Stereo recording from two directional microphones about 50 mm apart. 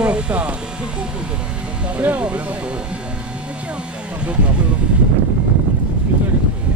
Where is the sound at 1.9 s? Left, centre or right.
Right.